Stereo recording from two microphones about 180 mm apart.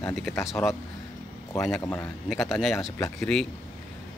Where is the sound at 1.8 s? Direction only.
15° left (ahead or behind).